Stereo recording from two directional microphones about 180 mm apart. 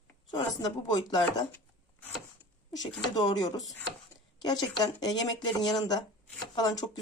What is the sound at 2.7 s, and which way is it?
Speech, 20° left (ahead or behind).